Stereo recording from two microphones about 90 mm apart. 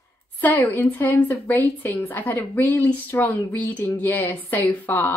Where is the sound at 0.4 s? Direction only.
25° left (ahead or behind).